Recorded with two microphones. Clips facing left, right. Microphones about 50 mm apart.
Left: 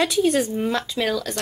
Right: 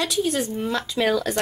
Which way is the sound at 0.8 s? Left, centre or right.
Centre.